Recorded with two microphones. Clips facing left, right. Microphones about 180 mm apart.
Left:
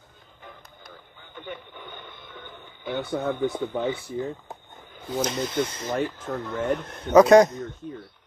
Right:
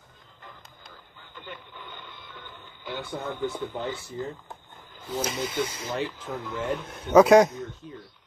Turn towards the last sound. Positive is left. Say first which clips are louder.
# left 2 dB
turn(degrees=-5)  # may be behind; listen again after turning